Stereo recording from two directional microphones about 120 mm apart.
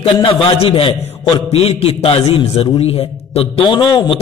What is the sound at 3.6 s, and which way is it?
Speech, 40° left (ahead or behind).